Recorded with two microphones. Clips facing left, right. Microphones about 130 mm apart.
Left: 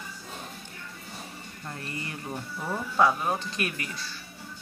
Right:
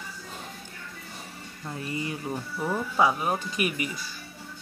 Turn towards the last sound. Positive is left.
turn(degrees=-10)  # may be behind; listen again after turning